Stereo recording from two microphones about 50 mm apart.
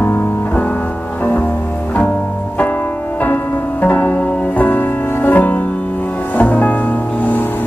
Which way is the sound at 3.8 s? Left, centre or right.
Left.